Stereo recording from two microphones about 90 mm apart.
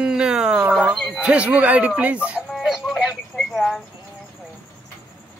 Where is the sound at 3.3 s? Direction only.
Centre (ahead or behind).